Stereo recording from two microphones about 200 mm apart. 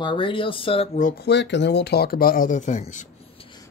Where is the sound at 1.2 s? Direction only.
60° left (ahead or behind); by 3.1 s 35° left (ahead or behind).